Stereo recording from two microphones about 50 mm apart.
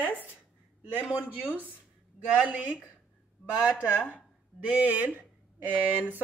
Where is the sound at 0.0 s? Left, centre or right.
Left.